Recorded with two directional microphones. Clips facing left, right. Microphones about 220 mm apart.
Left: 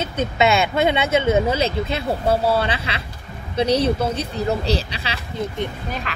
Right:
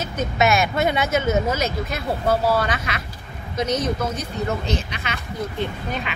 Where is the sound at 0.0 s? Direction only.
30° left (ahead or behind).